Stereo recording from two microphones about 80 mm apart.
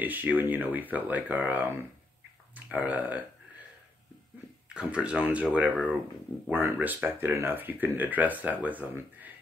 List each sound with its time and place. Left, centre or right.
0.0 s speech: right
4.6 s speech: centre